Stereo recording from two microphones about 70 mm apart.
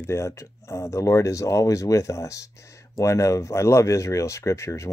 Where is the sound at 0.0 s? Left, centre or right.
Left.